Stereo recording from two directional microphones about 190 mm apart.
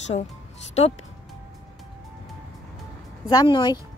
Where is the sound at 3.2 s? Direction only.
25° left (ahead or behind).